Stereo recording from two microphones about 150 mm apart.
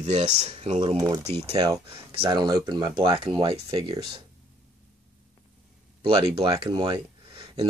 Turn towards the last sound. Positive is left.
turn(degrees=-30)  # may be behind; listen again after turning